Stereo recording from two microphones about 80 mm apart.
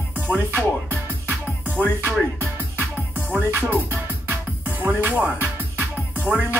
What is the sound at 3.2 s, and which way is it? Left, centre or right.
Music, centre.